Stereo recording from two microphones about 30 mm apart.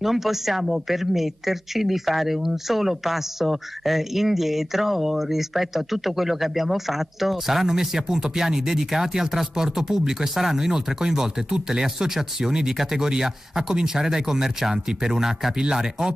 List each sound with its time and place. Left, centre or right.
0.0 s speech: centre